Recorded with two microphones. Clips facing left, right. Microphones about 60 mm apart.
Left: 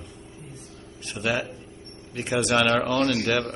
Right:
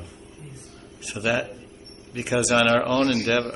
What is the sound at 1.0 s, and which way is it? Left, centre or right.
A man's voice, centre.